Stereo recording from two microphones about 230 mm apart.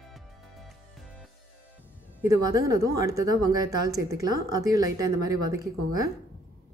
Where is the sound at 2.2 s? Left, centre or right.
Centre.